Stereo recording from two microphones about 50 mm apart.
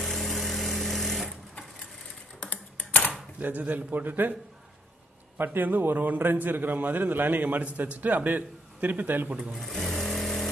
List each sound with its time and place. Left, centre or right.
0.0 s sewing machine: centre
2.4 s typing: left
3.1 s speech: right
5.4 s a man's voice: right
9.4 s speech: centre
9.7 s vehicle: centre